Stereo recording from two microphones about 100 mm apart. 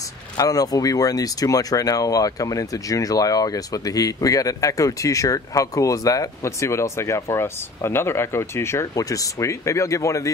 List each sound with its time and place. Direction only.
0.4 s speech: 40° left (ahead or behind)